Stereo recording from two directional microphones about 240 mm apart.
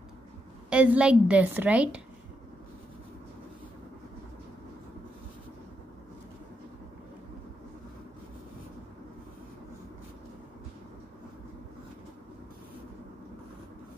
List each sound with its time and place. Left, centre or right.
0.7 s a woman's voice: centre